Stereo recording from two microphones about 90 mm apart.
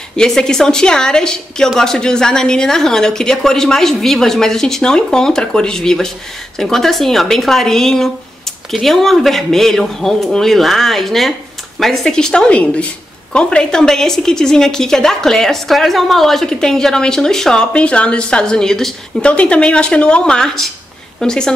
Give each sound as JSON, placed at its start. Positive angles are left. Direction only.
{"t": 0.1, "sound": "a woman's voice", "side_deg": 5}